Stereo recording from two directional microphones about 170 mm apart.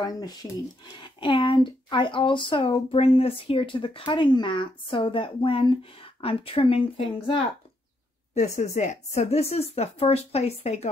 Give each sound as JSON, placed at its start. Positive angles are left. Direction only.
{"t": 0.0, "sound": "speech", "side_deg": 20}
{"t": 8.4, "sound": "speech", "side_deg": 45}